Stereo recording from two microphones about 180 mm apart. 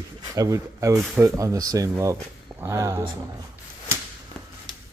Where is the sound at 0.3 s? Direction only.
20° right (ahead or behind).